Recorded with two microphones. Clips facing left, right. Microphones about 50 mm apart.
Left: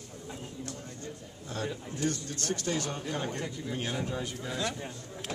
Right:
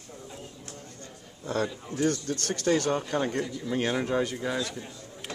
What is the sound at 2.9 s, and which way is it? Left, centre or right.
A man's voice, right.